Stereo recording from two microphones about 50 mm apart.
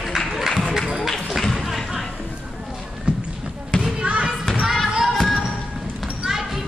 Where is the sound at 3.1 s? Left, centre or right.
Centre.